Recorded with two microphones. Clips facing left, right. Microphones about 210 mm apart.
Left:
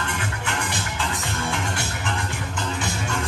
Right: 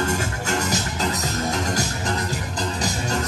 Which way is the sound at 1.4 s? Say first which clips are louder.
Right 4 dB; 40° right (ahead or behind).